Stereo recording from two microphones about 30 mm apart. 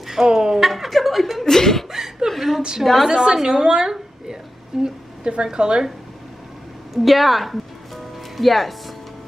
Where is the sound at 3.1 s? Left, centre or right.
Right.